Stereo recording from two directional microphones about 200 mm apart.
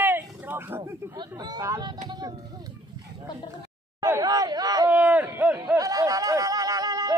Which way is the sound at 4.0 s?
15° right (ahead or behind).